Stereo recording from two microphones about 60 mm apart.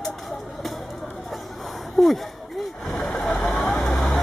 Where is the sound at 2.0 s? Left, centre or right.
Centre.